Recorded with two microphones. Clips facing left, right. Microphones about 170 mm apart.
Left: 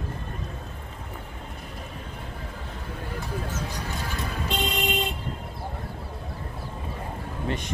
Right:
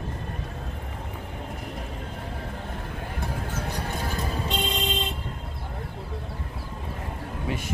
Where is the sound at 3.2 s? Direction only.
55° right (ahead or behind).